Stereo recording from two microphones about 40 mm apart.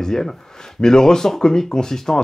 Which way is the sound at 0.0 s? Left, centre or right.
Centre.